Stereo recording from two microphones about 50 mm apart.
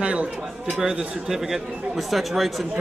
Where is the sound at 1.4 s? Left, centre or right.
Centre.